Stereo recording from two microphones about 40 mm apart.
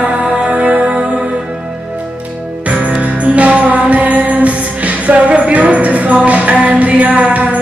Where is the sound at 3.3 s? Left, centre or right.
Right.